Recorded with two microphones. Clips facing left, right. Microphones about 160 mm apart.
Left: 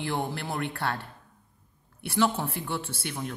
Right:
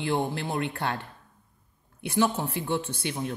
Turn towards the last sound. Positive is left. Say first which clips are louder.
# right 3 dB
turn(degrees=-20)  # may be behind; listen again after turning